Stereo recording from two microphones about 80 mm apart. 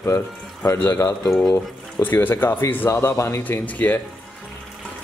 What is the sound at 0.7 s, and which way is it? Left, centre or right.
Speech, left.